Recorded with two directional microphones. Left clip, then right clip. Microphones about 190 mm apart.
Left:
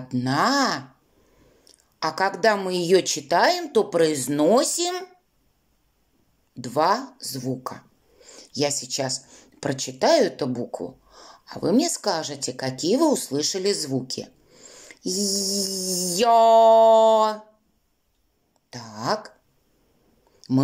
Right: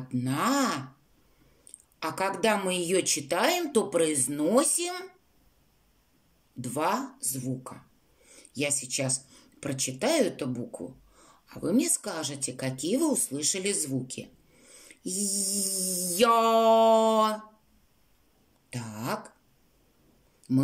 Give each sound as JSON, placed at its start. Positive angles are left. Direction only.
{"t": 0.1, "sound": "speech", "side_deg": -15}
{"t": 6.6, "sound": "speech", "side_deg": -15}
{"t": 18.7, "sound": "speech", "side_deg": -15}
{"t": 20.4, "sound": "a sound", "side_deg": -20}